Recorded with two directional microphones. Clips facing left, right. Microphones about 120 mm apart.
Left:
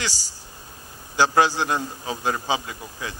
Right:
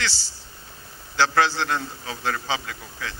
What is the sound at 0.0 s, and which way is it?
A man's voice, 15° left (ahead or behind).